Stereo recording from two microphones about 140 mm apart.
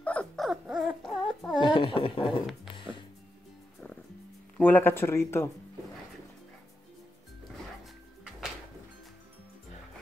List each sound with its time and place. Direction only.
0.0 s dog: 10° left (ahead or behind)
1.6 s speech: 35° left (ahead or behind)
4.6 s speech: 15° left (ahead or behind)
7.8 s music: 5° right (ahead or behind)